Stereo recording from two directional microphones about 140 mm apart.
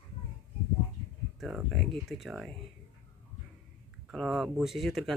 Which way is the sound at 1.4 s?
5° right (ahead or behind).